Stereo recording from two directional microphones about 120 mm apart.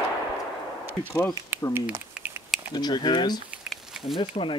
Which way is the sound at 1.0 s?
20° left (ahead or behind).